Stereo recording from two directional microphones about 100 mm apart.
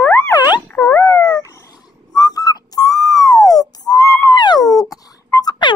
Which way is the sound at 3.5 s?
40° left (ahead or behind).